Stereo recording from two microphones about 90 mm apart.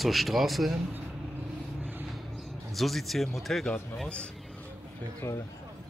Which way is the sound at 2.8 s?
Centre (ahead or behind).